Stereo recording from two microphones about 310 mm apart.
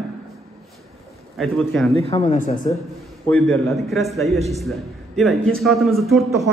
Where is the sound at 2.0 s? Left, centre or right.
Left.